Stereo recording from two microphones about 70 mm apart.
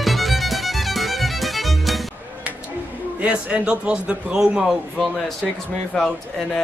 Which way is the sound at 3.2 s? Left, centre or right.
Centre.